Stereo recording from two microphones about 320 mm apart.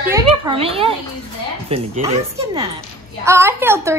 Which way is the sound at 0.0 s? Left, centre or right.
Centre.